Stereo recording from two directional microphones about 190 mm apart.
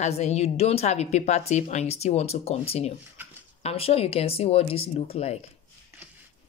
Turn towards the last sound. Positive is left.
turn(degrees=35)  # may be behind; listen again after turning